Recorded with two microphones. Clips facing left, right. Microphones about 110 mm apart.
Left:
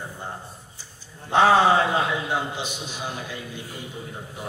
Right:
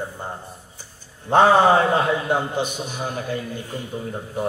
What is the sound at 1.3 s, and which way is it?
A man's voice, 50° right (ahead or behind).